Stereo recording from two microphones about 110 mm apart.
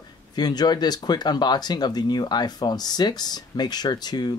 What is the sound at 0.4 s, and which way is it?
Speech, 40° left (ahead or behind).